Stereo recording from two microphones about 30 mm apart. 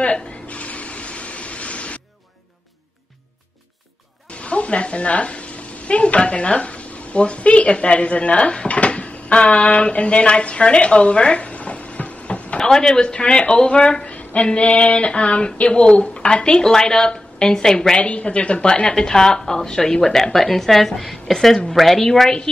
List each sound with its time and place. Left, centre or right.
0.0 s a sound: left
4.3 s a woman's voice: left
8.6 s a sound: left
12.5 s a woman's voice: left
17.9 s speech: left
18.9 s a woman's voice: left